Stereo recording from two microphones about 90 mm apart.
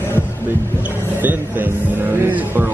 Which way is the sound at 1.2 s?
20° right (ahead or behind).